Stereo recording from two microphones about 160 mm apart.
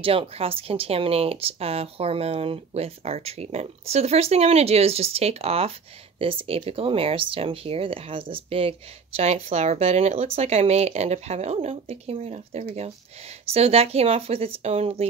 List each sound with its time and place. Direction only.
0.0 s speech: 35° right (ahead or behind)